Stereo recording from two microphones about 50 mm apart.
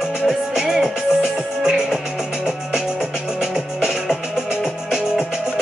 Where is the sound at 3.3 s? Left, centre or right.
Centre.